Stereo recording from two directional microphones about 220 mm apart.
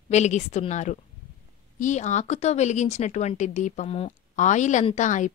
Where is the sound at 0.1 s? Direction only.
30° left (ahead or behind).